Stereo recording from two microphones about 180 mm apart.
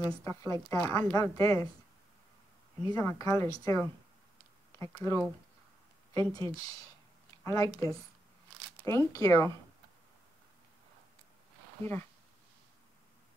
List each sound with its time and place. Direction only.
0.0 s a woman's voice: 15° left (ahead or behind)
2.9 s a woman's voice: 15° left (ahead or behind)
7.4 s a woman's voice: 15° left (ahead or behind)
11.8 s a woman's voice: 15° left (ahead or behind)